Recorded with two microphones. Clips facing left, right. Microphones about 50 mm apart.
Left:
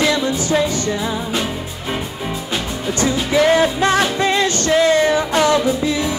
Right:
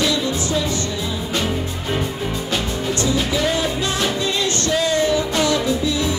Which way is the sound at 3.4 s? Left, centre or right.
Left.